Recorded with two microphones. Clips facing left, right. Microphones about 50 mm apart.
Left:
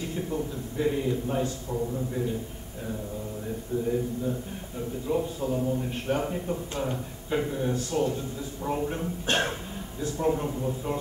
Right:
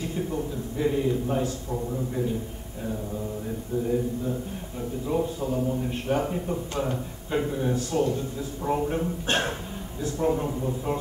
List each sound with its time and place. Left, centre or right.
0.0 s a man's voice: centre
5.0 s a man's voice: centre